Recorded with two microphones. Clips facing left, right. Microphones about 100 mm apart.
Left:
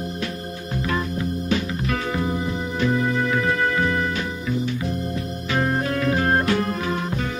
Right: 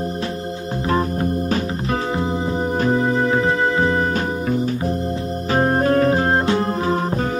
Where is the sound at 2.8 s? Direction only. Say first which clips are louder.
Right 2 dB; 35° right (ahead or behind).